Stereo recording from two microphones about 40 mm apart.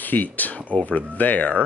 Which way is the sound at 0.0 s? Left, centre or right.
Left.